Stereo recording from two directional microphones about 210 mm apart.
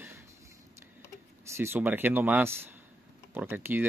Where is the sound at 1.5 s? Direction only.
10° right (ahead or behind).